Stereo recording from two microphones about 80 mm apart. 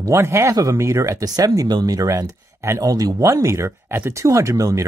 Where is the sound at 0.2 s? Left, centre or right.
Right.